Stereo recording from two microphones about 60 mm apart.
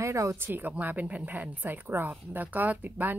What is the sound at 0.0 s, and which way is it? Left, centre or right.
Speech, right.